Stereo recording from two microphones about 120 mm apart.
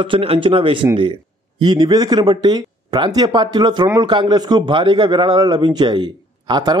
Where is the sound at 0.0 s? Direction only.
50° right (ahead or behind).